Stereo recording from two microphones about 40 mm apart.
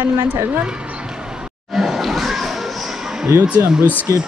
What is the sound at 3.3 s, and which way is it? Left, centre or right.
Speech, right.